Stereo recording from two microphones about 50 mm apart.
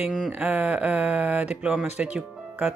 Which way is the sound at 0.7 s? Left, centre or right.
Right.